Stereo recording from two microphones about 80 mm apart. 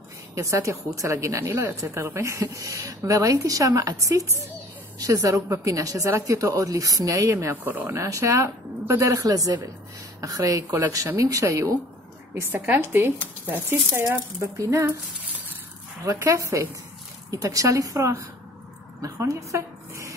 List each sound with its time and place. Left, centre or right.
0.3 s a woman's voice: right
7.6 s speech: right
7.9 s a woman's voice: right
12.4 s speech: right
16.3 s a woman's voice: right